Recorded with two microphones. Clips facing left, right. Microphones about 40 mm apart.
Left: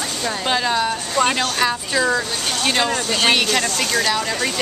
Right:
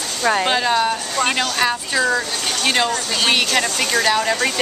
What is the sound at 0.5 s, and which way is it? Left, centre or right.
A woman's voice, centre.